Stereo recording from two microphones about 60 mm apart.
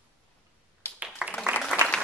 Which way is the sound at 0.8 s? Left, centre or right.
Left.